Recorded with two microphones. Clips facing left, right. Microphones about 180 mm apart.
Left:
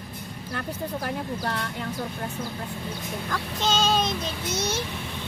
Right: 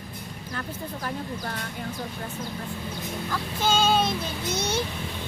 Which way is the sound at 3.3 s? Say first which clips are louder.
Right 1 dB; 10° right (ahead or behind).